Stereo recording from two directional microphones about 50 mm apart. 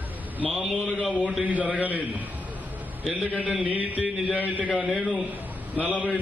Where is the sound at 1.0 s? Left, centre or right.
Right.